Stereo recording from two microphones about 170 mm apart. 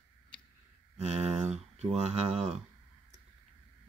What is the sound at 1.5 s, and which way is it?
Speech, 40° right (ahead or behind).